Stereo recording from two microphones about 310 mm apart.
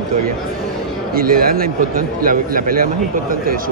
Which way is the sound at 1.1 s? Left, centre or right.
Right.